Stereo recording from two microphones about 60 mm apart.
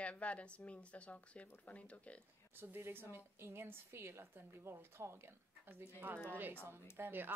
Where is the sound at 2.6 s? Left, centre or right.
Right.